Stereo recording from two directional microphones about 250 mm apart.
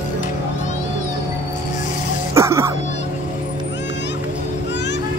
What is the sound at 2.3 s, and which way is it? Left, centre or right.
Music, centre.